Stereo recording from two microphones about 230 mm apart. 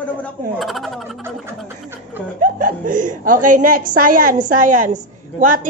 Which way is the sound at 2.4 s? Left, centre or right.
Right.